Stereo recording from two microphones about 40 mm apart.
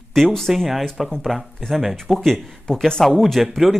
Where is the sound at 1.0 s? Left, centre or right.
Centre.